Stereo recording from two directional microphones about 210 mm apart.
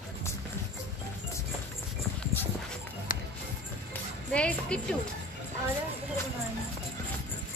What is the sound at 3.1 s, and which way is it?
Music, 40° left (ahead or behind).